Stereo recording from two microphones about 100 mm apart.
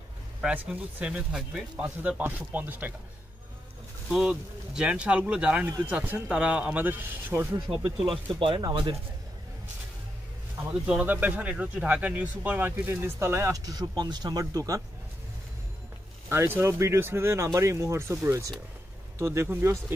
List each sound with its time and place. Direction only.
0.4 s speech: 10° right (ahead or behind)
4.1 s speech: 10° right (ahead or behind)
8.0 s speech: centre (ahead or behind)
8.4 s speech: 55° right (ahead or behind)
10.7 s speech: 10° right (ahead or behind); by 14.8 s 35° right (ahead or behind)
16.3 s speech: 25° right (ahead or behind)